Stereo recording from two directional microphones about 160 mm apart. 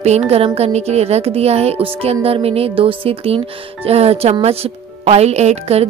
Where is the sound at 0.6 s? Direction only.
40° right (ahead or behind).